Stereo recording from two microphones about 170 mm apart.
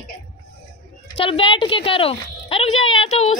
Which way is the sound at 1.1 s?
35° left (ahead or behind).